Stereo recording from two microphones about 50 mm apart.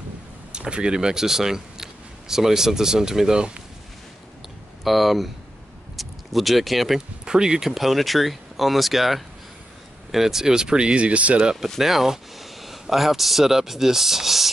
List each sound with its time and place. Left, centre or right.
0.5 s speech: centre
4.8 s speech: centre
7.2 s speech: centre
11.6 s speech: centre